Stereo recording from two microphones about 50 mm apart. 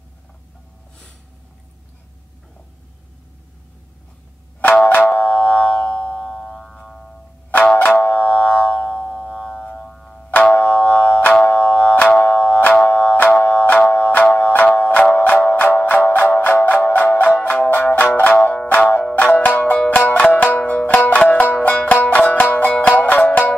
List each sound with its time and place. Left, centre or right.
4.7 s music: left; by 7.2 s centre
8.0 s music: left
8.8 s music: centre
10.3 s music: left
12.0 s music: left
12.3 s music: left